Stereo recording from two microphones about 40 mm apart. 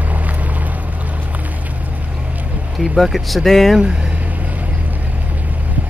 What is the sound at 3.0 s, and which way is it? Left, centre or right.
Speech, centre.